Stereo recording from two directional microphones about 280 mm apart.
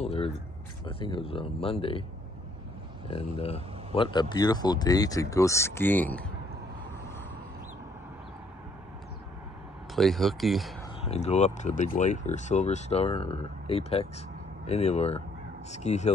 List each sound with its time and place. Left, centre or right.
0.0 s a sound: left
0.8 s speech: centre
3.1 s speech: left
9.9 s speech: centre
11.1 s speech: left